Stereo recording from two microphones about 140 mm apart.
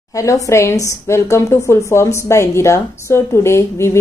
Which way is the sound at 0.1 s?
25° left (ahead or behind).